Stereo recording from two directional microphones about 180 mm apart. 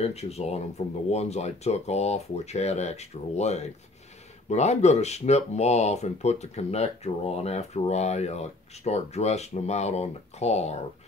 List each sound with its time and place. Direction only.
0.0 s speech: 35° left (ahead or behind)